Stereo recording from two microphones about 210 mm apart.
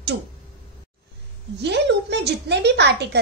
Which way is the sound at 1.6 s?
55° right (ahead or behind).